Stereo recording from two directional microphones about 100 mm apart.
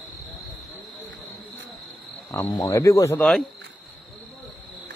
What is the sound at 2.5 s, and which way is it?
Speech, 40° left (ahead or behind).